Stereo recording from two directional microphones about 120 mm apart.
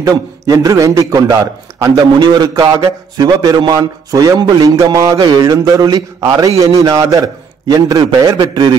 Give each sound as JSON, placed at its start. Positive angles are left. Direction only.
{"t": 0.0, "sound": "a man's voice", "side_deg": -30}